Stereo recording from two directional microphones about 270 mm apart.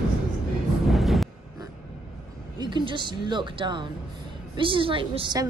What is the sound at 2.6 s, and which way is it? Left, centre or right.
A woman's voice, centre.